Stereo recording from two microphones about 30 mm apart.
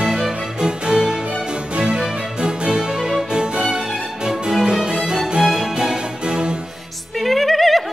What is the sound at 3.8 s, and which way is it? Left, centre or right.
Music, centre.